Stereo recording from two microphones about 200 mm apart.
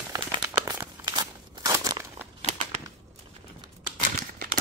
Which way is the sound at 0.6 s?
15° right (ahead or behind).